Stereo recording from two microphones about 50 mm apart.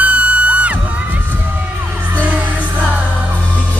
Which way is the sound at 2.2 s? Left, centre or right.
Right.